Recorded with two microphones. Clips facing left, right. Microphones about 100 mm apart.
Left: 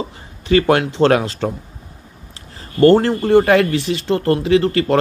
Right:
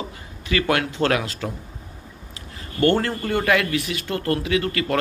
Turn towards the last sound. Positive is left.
turn(degrees=30)  # may be behind; listen again after turning